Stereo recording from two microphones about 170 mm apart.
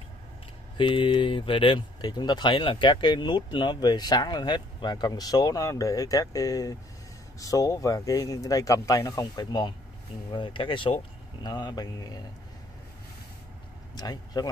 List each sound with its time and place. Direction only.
0.7 s speech: 30° left (ahead or behind)
13.9 s speech: 20° left (ahead or behind)